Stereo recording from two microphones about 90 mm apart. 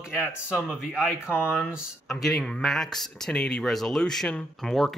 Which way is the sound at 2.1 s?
Centre (ahead or behind).